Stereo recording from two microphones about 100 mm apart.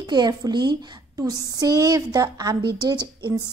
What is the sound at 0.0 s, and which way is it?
A woman's voice, 45° right (ahead or behind).